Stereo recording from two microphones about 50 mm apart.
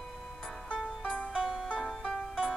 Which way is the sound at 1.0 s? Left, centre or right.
Left.